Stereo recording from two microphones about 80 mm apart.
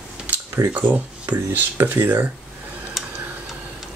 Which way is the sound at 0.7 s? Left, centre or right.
Right.